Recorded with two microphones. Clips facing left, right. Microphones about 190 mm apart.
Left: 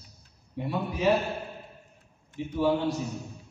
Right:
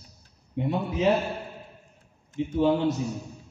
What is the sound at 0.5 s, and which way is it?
Speech, 20° right (ahead or behind).